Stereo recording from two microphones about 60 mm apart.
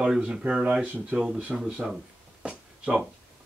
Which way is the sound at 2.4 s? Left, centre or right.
Centre.